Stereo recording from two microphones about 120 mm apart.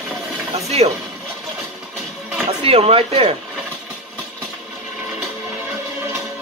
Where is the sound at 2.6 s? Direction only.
55° right (ahead or behind).